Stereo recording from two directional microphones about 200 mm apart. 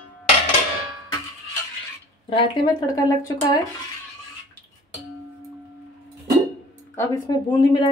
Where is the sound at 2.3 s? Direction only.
20° left (ahead or behind).